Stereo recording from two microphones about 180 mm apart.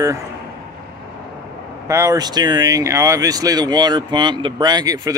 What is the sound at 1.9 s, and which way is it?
Speech, 15° right (ahead or behind).